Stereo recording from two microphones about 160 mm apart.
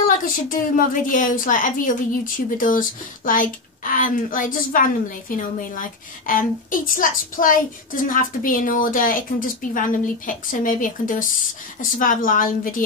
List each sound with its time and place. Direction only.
0.0 s a woman's voice: 55° left (ahead or behind)